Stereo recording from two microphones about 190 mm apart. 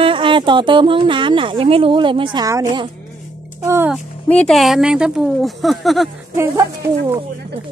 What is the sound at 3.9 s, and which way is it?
Speech, 5° left (ahead or behind).